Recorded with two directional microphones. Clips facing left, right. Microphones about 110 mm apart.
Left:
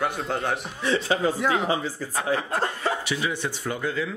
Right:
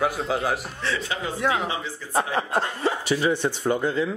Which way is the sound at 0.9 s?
35° left (ahead or behind).